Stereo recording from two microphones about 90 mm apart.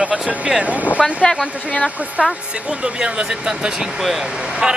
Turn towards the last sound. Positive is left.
turn(degrees=-10)  # may be behind; listen again after turning